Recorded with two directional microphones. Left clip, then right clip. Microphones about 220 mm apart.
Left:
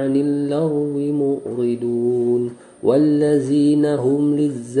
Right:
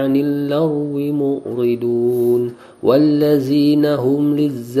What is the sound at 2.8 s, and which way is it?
Mantra, 20° right (ahead or behind).